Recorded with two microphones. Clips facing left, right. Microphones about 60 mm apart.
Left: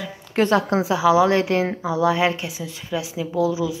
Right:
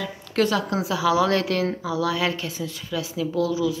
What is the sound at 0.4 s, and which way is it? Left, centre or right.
A woman's voice, left.